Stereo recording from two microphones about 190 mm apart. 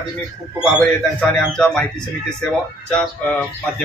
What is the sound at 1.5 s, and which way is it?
Speech, 5° left (ahead or behind).